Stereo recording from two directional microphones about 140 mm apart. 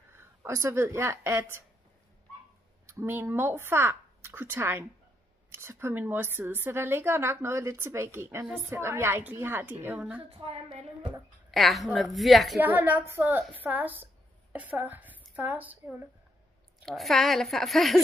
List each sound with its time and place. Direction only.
0.1 s speech: 20° right (ahead or behind)
2.9 s a woman's voice: 15° right (ahead or behind)
10.3 s a woman's voice: 45° right (ahead or behind)
11.5 s a woman's voice: centre (ahead or behind)
12.5 s a woman's voice: 10° right (ahead or behind)
16.8 s a woman's voice: centre (ahead or behind)